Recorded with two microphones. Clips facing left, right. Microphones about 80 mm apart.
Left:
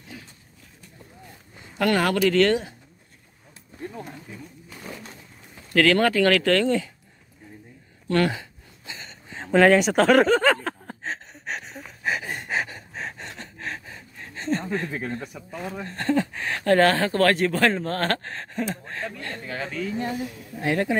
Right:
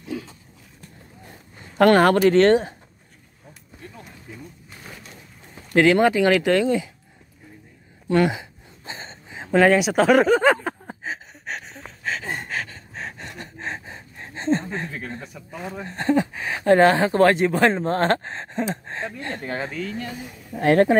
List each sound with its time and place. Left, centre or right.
1.8 s speech: right
2.2 s speech: right
5.7 s speech: centre
8.1 s speech: centre
8.8 s a sound: right
9.3 s speech: centre
11.3 s a sound: centre
12.0 s a sound: centre
12.9 s a sound: centre
13.6 s gasp: right
14.9 s speech: centre
15.1 s speech: centre
15.6 s speech: centre
20.5 s speech: right